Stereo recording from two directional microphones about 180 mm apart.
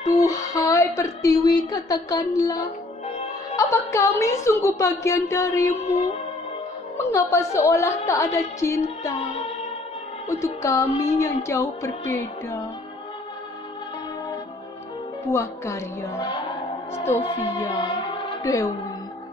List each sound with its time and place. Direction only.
0.1 s a woman's voice: 20° left (ahead or behind)
7.0 s a woman's voice: 15° left (ahead or behind)
10.2 s a woman's voice: 15° left (ahead or behind)
15.3 s a woman's voice: 15° left (ahead or behind)
18.4 s a woman's voice: 20° left (ahead or behind)